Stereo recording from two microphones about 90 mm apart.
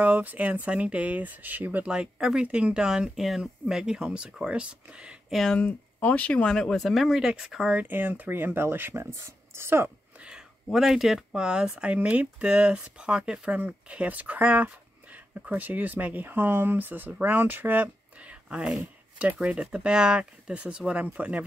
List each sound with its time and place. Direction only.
0.0 s speech: 20° right (ahead or behind)
5.3 s speech: 5° left (ahead or behind)
5.6 s speech: 15° left (ahead or behind); by 7.7 s 5° right (ahead or behind)
7.7 s speech: 20° right (ahead or behind)
10.2 s speech: 5° right (ahead or behind)